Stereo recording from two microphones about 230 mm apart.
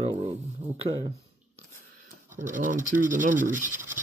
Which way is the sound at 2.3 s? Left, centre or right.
Right.